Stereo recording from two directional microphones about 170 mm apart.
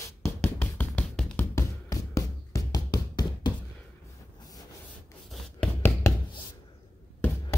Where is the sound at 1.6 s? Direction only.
20° left (ahead or behind).